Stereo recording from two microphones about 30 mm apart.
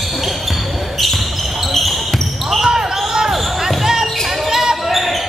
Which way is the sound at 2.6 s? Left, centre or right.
Centre.